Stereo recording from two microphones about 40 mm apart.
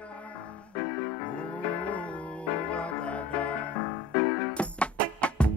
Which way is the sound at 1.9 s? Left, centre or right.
Left.